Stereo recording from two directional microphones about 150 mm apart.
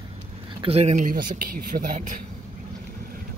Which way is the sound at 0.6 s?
45° right (ahead or behind).